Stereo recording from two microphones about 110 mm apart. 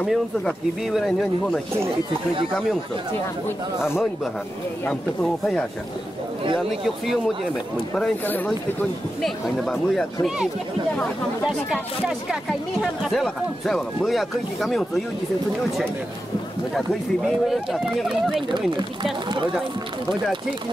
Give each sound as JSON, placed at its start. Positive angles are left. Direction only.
{"t": 0.0, "sound": "speech", "side_deg": 0}
{"t": 4.8, "sound": "speech", "side_deg": 10}
{"t": 7.9, "sound": "speech", "side_deg": 5}
{"t": 16.7, "sound": "speech", "side_deg": 0}
{"t": 18.5, "sound": "speech", "side_deg": -45}